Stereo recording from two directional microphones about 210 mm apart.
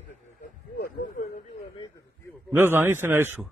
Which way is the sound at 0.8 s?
40° left (ahead or behind).